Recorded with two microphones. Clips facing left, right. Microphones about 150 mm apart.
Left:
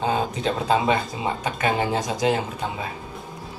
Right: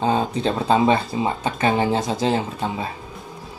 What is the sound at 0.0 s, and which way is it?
Speech, 35° right (ahead or behind).